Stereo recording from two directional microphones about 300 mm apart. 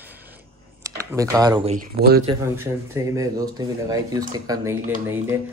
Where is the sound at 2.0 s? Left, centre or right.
Right.